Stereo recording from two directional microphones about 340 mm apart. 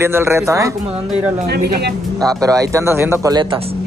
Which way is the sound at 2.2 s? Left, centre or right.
Centre.